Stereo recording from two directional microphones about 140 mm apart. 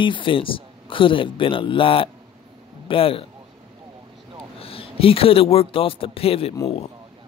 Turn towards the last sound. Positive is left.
turn(degrees=45)  # may be behind; listen again after turning